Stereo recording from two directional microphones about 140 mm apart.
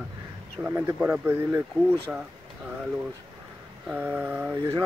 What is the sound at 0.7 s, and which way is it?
Speech, 15° right (ahead or behind).